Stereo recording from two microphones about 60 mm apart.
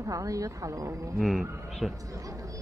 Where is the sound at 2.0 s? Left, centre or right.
Right.